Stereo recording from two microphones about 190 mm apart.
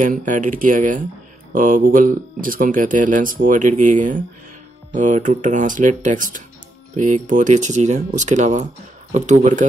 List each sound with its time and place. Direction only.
0.0 s speech: 45° right (ahead or behind)